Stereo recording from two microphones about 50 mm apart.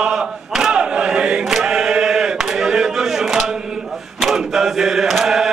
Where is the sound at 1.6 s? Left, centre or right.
Centre.